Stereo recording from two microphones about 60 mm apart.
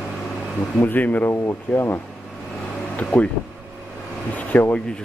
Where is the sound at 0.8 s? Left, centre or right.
Left.